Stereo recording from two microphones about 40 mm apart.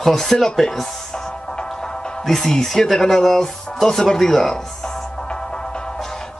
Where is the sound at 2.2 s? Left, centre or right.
Centre.